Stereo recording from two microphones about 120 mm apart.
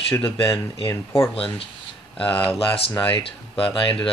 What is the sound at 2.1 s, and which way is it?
Speech, 10° left (ahead or behind).